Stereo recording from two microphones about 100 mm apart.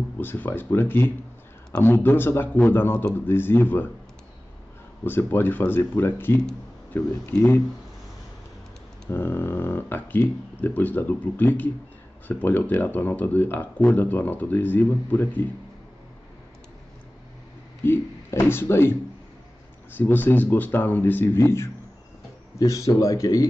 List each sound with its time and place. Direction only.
0.2 s speech: 20° left (ahead or behind)
5.0 s speech: 20° left (ahead or behind)
9.1 s speech: 20° left (ahead or behind)
17.8 s speech: 25° left (ahead or behind)